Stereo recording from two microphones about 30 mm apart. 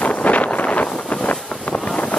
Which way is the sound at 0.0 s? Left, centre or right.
Left.